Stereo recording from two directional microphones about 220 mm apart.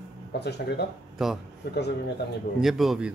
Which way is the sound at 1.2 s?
Centre (ahead or behind).